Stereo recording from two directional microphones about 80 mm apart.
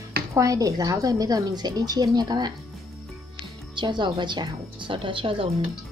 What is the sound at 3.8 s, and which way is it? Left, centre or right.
Speech, right.